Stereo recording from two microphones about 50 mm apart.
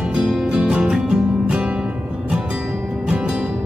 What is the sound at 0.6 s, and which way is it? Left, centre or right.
Music, centre.